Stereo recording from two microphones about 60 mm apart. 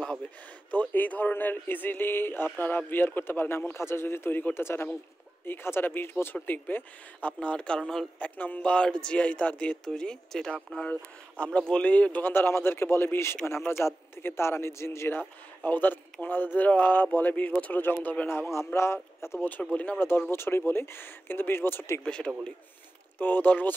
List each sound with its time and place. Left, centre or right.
0.7 s speech: left
7.3 s speech: centre; by 15.1 s left
15.1 s speech: left
18.7 s speech: left
19.6 s speech: left
20.0 s speech: left
22.0 s speech: centre
23.1 s speech: left